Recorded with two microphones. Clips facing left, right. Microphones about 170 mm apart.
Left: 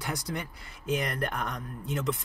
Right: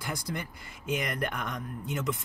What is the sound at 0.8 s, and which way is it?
Speech, 35° left (ahead or behind).